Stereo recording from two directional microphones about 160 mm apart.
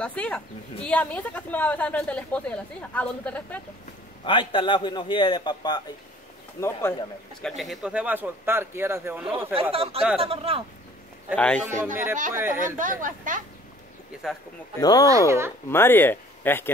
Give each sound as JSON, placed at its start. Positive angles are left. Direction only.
{"t": 0.0, "sound": "speech", "side_deg": 5}
{"t": 4.2, "sound": "a man's voice", "side_deg": 30}
{"t": 6.6, "sound": "speech", "side_deg": 15}
{"t": 7.4, "sound": "a man's voice", "side_deg": 0}
{"t": 9.6, "sound": "speech", "side_deg": -35}
{"t": 11.3, "sound": "speech", "side_deg": 5}
{"t": 11.8, "sound": "a man's voice", "side_deg": -15}
{"t": 12.5, "sound": "speech", "side_deg": -55}
{"t": 14.2, "sound": "speech", "side_deg": -5}
{"t": 14.8, "sound": "a man's voice", "side_deg": 25}
{"t": 15.0, "sound": "speech", "side_deg": -20}
{"t": 15.7, "sound": "speech", "side_deg": 15}